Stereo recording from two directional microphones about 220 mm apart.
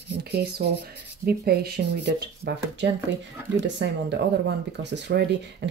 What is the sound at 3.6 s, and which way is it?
Speech, 55° right (ahead or behind).